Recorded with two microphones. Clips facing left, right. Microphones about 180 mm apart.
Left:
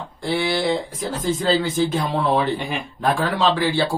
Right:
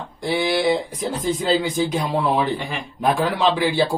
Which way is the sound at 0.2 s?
15° right (ahead or behind).